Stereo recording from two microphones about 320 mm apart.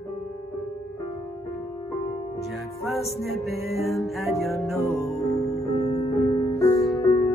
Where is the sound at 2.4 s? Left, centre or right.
Centre.